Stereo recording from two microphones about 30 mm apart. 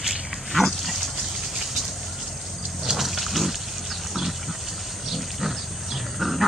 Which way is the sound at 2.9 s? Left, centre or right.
Centre.